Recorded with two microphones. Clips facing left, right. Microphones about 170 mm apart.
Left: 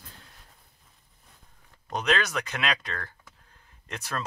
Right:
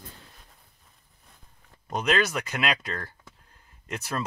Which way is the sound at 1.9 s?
5° right (ahead or behind).